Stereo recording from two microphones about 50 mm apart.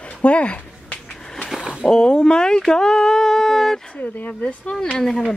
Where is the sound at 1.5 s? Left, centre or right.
Centre.